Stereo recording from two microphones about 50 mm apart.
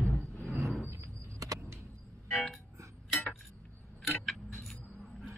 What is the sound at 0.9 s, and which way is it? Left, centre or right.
Vehicle, right.